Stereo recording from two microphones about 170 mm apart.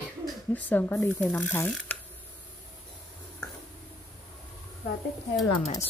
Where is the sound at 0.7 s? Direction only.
10° left (ahead or behind).